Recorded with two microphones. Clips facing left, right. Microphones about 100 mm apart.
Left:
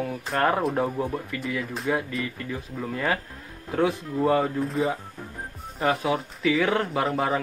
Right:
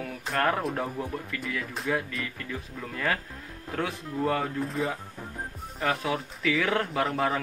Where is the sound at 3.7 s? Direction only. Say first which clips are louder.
Left 7 dB; 15° left (ahead or behind).